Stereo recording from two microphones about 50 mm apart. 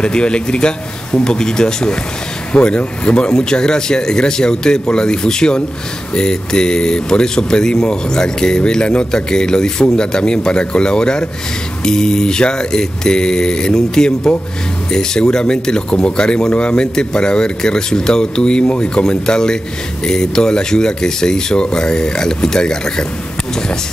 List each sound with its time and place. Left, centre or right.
0.0 s speech: centre